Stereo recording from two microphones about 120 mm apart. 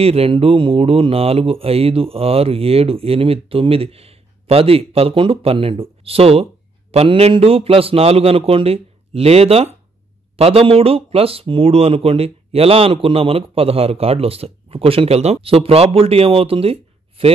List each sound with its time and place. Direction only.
0.0 s a man's voice: 55° right (ahead or behind)